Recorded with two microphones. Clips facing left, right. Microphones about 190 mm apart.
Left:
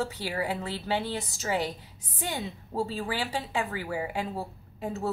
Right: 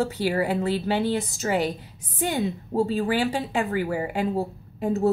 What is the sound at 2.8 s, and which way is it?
Speech, 50° right (ahead or behind).